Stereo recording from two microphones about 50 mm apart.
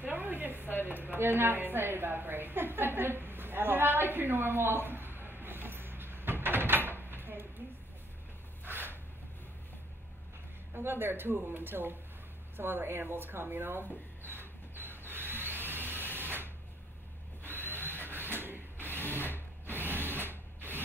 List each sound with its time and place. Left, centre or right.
0.0 s a sound: right
0.8 s a woman's voice: right
6.9 s door: right
8.6 s a sound: right
10.7 s a woman's voice: right
14.2 s tools: right
17.9 s printer: right
19.3 s rub: left
19.8 s a sound: right